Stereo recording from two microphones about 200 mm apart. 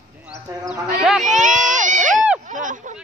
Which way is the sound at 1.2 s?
40° right (ahead or behind).